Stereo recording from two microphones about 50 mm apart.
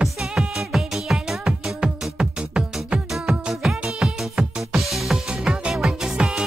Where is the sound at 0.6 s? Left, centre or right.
Centre.